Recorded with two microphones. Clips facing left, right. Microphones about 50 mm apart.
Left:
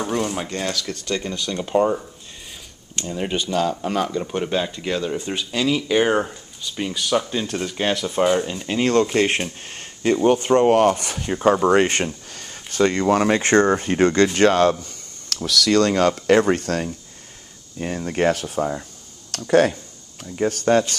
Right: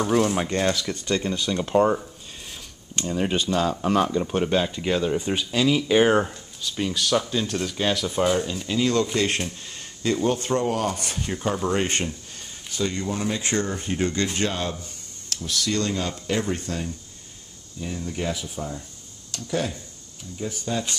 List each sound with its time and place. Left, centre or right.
0.0 s speech: centre
0.6 s speech: centre
1.5 s speech: centre
3.0 s speech: centre
8.6 s speech: left
9.6 s a sound: left
10.2 s speech: left
10.7 s speech: left
11.1 s speech: left
12.4 s speech: left
13.7 s speech: left